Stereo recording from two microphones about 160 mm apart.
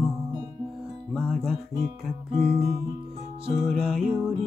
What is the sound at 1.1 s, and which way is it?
Music, centre (ahead or behind).